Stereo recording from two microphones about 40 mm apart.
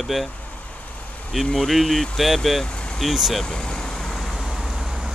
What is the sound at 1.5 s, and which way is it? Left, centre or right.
Speech, centre.